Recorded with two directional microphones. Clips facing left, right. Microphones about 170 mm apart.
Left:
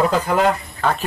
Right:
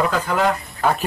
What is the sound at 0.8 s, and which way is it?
Speech, 5° right (ahead or behind).